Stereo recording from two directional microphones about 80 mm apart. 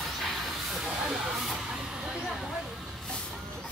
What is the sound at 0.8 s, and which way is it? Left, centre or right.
Speech, centre.